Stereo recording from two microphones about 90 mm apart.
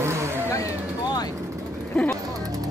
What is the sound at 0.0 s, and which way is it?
Vehicle, 30° right (ahead or behind).